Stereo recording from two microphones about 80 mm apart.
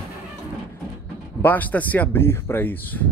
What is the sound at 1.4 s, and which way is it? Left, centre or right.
Speech, left.